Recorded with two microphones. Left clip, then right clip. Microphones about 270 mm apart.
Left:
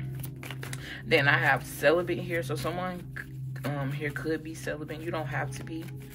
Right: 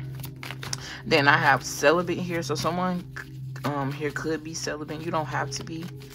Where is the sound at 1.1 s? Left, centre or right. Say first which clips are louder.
Right 4 dB; centre.